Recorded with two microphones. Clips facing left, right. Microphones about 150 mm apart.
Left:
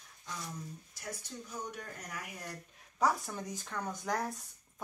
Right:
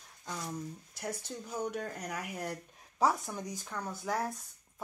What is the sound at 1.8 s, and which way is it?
Speech, 65° right (ahead or behind).